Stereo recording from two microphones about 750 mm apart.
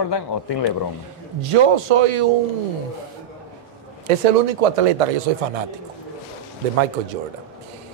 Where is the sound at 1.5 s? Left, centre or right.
Right.